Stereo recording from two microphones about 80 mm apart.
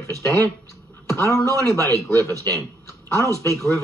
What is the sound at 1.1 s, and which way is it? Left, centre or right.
Speech, left.